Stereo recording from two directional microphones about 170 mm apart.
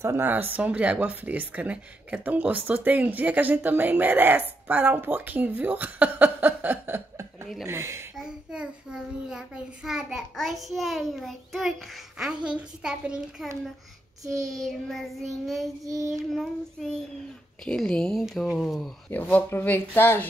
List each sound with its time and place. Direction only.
0.0 s speech: 15° right (ahead or behind)
8.2 s a child's voice: 5° right (ahead or behind); by 20.2 s 10° left (ahead or behind)